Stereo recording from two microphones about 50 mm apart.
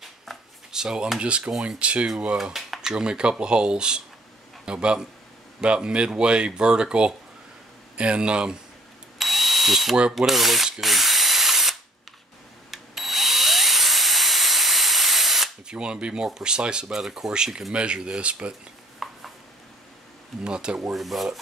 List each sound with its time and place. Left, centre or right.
0.7 s a sound: centre
1.2 s speech: right
2.5 s a sound: centre
2.9 s speech: centre
9.2 s drill: centre
12.7 s drill: centre
15.6 s speech: centre
16.8 s speech: centre; by 18.5 s right
19.0 s a sound: centre
20.4 s speech: centre
20.9 s speech: centre